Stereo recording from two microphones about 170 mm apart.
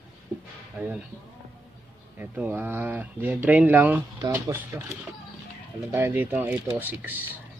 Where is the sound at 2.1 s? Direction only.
10° right (ahead or behind).